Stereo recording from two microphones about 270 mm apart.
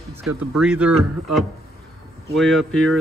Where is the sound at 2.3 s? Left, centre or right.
Centre.